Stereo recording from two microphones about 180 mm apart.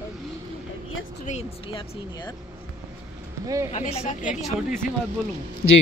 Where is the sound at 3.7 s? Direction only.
35° left (ahead or behind).